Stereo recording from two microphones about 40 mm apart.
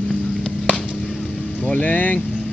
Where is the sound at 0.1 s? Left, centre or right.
Left.